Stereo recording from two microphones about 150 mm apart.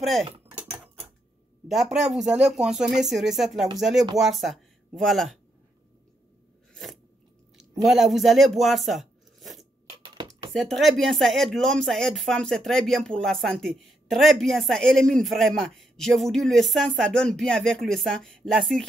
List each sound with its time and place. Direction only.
1.7 s speech: 5° right (ahead or behind)
6.7 s crunch: centre (ahead or behind)
7.5 s speech: centre (ahead or behind)
10.0 s a sound: 30° right (ahead or behind)
10.5 s speech: centre (ahead or behind)